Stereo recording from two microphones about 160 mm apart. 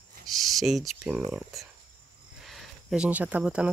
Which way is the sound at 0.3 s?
Centre (ahead or behind).